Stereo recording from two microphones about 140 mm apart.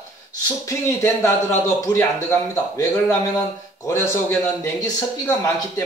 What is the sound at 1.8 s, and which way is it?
A man's voice, 20° left (ahead or behind).